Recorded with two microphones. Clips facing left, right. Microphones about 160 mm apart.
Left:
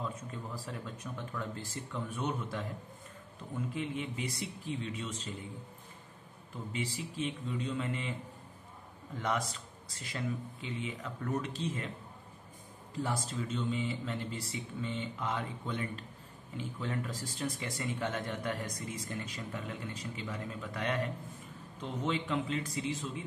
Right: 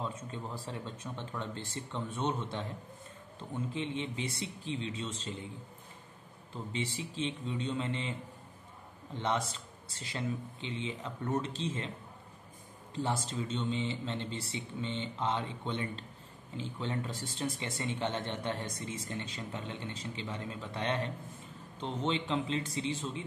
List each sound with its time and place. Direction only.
0.7 s speech: 30° right (ahead or behind)
6.5 s speech: 30° right (ahead or behind)
9.1 s speech: 25° right (ahead or behind)
12.9 s speech: 25° right (ahead or behind)